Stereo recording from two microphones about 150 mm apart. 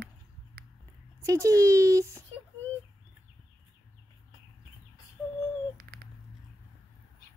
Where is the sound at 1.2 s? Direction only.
20° right (ahead or behind).